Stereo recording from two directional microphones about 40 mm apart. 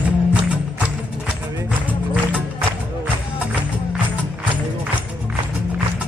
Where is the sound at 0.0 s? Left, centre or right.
Right.